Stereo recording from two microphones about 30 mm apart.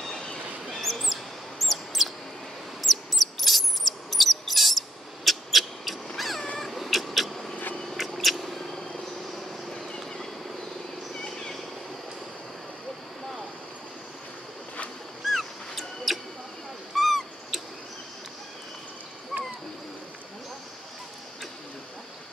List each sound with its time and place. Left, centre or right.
0.7 s bird: centre
2.8 s a sound: centre
6.1 s vehicle: centre
8.1 s mouse: centre
9.7 s vehicle: left
11.1 s a sound: left
15.2 s dog: centre
16.1 s mouse: centre
16.9 s owl: centre
19.3 s a sound: centre